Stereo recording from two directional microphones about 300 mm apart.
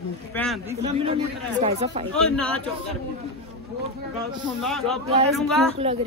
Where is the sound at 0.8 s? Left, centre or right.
Centre.